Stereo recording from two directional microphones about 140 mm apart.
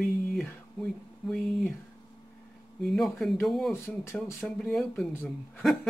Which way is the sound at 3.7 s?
15° left (ahead or behind).